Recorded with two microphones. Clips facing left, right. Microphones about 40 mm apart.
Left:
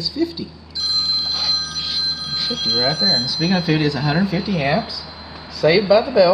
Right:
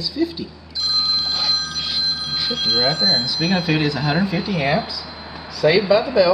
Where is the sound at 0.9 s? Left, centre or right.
Centre.